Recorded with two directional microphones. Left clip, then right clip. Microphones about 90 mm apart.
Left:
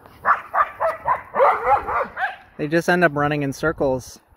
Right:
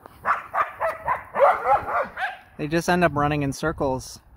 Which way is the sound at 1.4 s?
35° right (ahead or behind).